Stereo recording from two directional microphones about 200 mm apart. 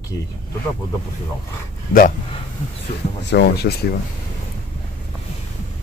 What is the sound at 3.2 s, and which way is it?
Speech, 55° left (ahead or behind).